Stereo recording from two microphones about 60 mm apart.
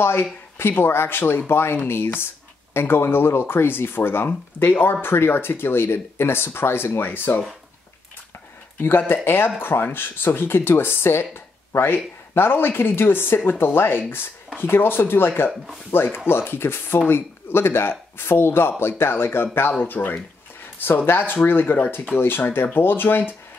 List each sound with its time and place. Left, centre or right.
0.6 s speech: left
8.7 s speech: left